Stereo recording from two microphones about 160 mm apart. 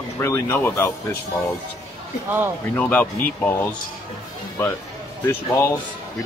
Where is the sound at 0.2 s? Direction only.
15° left (ahead or behind).